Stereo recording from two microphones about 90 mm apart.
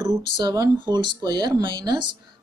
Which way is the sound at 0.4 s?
45° right (ahead or behind).